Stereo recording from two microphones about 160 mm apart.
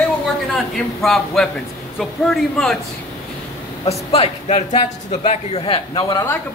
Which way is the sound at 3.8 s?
40° left (ahead or behind).